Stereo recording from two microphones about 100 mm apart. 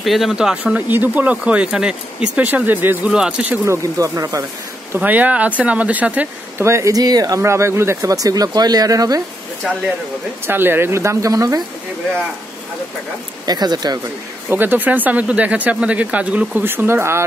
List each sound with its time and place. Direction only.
0.0 s speech: centre (ahead or behind)
0.7 s speech: 20° right (ahead or behind)
3.1 s speech: 10° right (ahead or behind)
3.6 s speech: 30° right (ahead or behind)
4.9 s speech: 15° right (ahead or behind)
6.6 s speech: 30° right (ahead or behind)
10.4 s speech: 20° right (ahead or behind)
13.5 s speech: 45° right (ahead or behind)
14.5 s speech: 20° right (ahead or behind)